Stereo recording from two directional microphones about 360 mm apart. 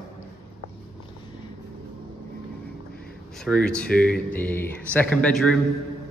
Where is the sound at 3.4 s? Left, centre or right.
Centre.